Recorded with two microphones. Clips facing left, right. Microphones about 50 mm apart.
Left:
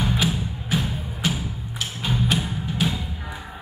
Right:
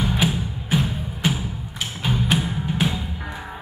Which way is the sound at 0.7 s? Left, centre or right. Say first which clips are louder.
Right 3 dB; centre.